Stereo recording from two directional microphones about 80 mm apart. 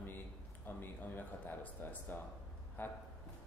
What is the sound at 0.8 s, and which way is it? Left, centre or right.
A man's voice, left.